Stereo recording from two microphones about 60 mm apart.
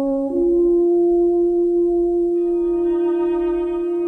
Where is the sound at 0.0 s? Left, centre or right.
Centre.